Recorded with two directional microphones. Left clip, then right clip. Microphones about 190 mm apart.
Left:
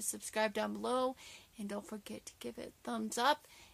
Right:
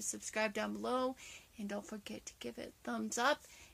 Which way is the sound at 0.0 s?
25° left (ahead or behind).